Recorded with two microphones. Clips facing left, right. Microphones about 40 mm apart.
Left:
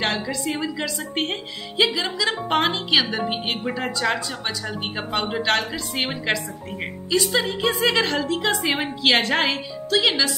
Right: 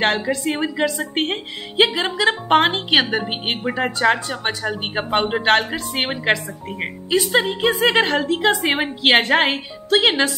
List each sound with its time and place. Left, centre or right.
0.0 s a woman's voice: right